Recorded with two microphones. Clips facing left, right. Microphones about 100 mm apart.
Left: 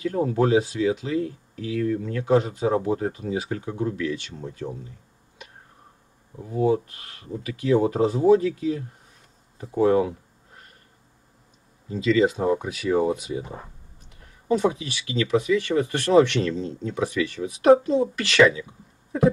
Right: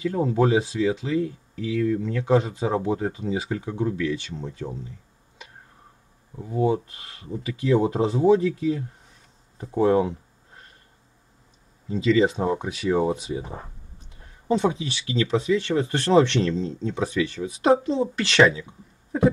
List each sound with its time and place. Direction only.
0.1 s speech: 25° right (ahead or behind)
1.5 s speech: 40° left (ahead or behind)
2.4 s speech: 25° right (ahead or behind)
6.4 s speech: 25° right (ahead or behind)
11.9 s speech: 30° right (ahead or behind)